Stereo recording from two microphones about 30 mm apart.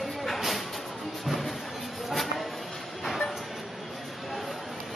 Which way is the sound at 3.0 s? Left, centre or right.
Centre.